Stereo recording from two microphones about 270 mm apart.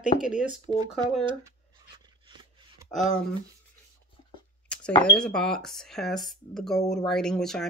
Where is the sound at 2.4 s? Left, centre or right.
Centre.